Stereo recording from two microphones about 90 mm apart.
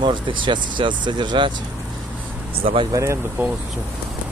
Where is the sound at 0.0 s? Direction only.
65° right (ahead or behind).